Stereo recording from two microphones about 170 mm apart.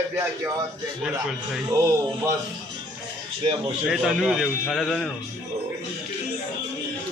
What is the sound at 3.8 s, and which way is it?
A man's voice, centre (ahead or behind).